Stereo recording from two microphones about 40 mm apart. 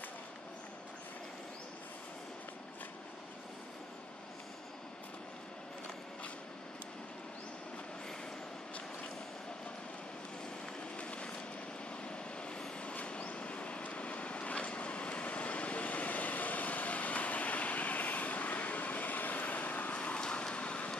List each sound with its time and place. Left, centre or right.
11.0 s vehicle: left
20.2 s fire: centre